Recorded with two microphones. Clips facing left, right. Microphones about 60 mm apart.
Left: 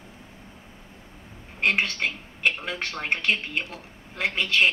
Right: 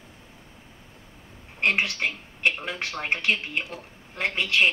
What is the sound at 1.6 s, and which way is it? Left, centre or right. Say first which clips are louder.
A woman's voice: even; centre.